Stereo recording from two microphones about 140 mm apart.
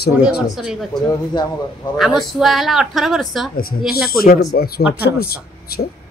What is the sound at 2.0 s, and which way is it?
Speech, centre (ahead or behind).